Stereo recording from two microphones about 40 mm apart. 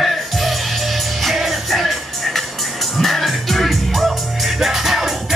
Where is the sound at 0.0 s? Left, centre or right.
Centre.